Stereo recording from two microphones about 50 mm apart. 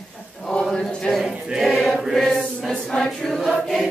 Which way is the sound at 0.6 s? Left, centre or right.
Centre.